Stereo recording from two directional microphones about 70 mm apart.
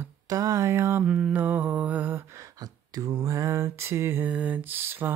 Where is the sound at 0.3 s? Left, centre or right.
Right.